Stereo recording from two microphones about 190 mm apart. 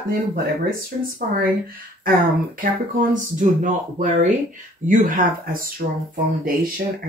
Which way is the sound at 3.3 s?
40° right (ahead or behind).